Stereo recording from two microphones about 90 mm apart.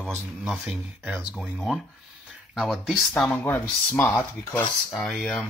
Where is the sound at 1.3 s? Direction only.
Centre (ahead or behind).